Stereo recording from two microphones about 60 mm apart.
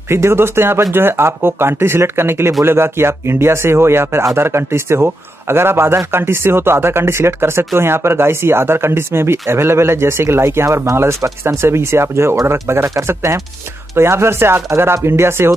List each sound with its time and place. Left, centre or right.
0.1 s a man's voice: right
11.4 s a man's voice: right